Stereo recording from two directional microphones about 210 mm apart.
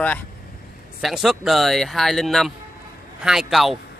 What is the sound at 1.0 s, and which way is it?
Speech, centre (ahead or behind).